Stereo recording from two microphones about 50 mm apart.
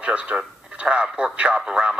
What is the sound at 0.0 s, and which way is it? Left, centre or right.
Speech, right.